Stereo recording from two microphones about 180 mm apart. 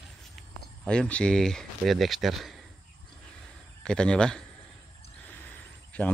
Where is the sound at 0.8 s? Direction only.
5° left (ahead or behind).